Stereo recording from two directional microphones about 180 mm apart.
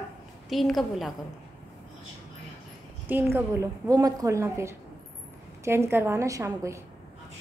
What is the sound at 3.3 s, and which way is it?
A woman's voice, 15° right (ahead or behind).